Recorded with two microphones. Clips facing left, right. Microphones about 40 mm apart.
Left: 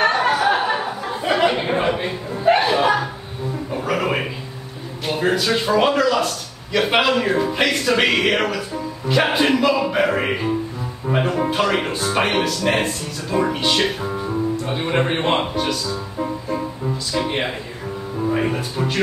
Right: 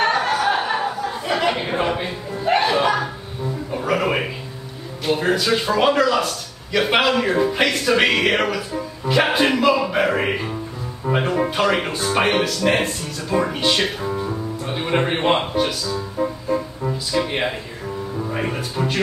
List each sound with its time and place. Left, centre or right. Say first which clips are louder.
0.2 s a sound: left 2 dB; centre
2.0 s music: left 4 dB; centre
5.0 s speech: even; centre